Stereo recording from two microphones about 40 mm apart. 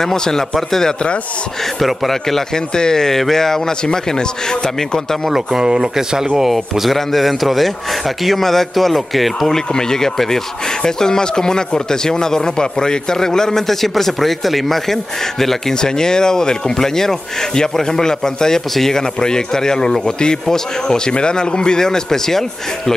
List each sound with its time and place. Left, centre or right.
0.0 s speech: centre
5.3 s speech: centre
6.5 s a man's voice: centre
9.5 s speech: centre
15.7 s speech: centre